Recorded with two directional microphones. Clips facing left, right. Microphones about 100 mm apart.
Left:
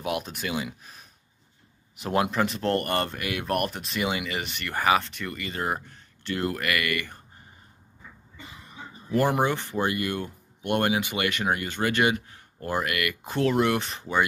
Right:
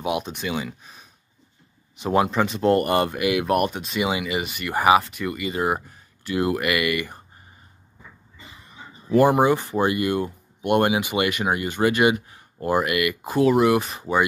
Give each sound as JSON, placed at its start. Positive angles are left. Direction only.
{"t": 0.0, "sound": "speech", "side_deg": 0}
{"t": 2.6, "sound": "speech", "side_deg": -10}
{"t": 4.7, "sound": "speech", "side_deg": -15}
{"t": 9.4, "sound": "speech", "side_deg": -15}